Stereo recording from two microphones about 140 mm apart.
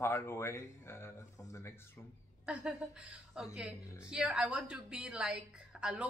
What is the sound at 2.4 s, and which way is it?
A woman's voice, 5° right (ahead or behind).